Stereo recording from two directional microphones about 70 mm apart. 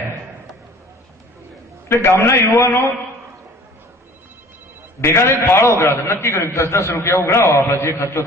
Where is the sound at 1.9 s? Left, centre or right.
Left.